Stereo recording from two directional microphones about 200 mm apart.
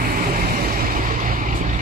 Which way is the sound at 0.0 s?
45° right (ahead or behind).